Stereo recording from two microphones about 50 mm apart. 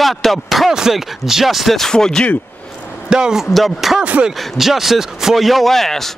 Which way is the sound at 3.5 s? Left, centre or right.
Centre.